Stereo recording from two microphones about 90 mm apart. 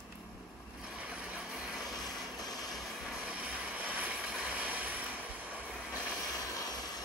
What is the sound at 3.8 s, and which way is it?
Vehicle, 15° right (ahead or behind).